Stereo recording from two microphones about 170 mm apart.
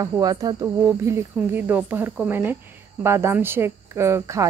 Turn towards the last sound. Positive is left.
turn(degrees=-15)  # may be behind; listen again after turning